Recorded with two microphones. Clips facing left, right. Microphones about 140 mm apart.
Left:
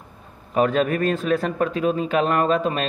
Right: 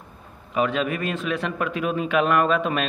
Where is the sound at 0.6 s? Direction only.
40° left (ahead or behind).